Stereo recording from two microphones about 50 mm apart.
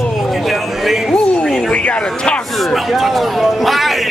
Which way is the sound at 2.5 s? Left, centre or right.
Centre.